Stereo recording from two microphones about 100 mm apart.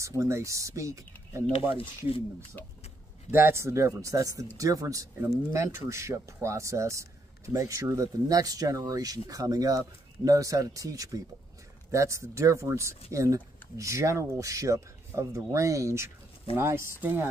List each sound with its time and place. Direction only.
0.2 s speech: 30° right (ahead or behind)
1.5 s speech: 70° left (ahead or behind)
3.3 s speech: 25° right (ahead or behind)